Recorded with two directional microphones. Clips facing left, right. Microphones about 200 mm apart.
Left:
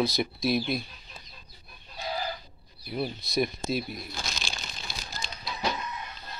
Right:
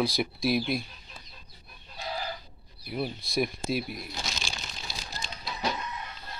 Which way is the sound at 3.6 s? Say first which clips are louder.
Even; 5° right (ahead or behind).